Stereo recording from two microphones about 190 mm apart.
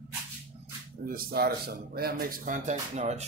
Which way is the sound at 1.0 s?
50° right (ahead or behind).